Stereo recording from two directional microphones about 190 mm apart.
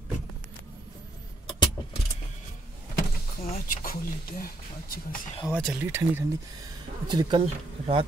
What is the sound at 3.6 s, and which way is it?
Speech, 50° left (ahead or behind).